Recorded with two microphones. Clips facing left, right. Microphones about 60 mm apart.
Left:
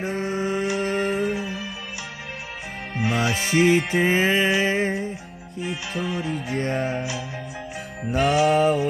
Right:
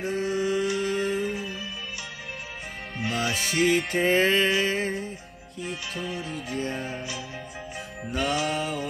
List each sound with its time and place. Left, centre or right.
0.0 s mantra: left
3.1 s music: left; by 4.6 s centre
4.6 s music: left
6.5 s music: left
8.1 s music: left